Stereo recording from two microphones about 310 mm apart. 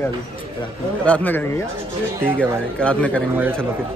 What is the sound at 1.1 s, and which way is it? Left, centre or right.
Speech, centre.